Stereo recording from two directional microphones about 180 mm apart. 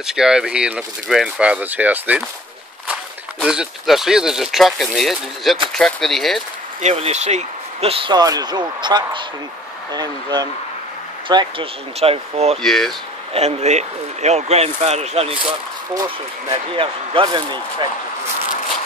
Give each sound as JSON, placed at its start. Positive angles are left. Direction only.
{"t": 0.0, "sound": "speech", "side_deg": -5}
{"t": 3.3, "sound": "speech", "side_deg": 0}
{"t": 6.8, "sound": "speech", "side_deg": -35}
{"t": 12.6, "sound": "speech", "side_deg": 0}
{"t": 13.3, "sound": "speech", "side_deg": -35}
{"t": 16.4, "sound": "speech", "side_deg": -30}